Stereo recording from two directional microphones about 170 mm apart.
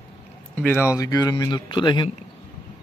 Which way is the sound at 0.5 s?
10° left (ahead or behind).